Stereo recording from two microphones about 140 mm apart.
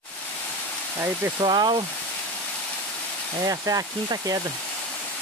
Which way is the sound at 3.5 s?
25° right (ahead or behind).